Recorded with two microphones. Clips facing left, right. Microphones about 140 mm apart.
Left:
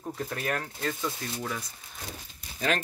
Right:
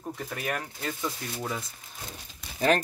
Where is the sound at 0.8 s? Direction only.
20° right (ahead or behind).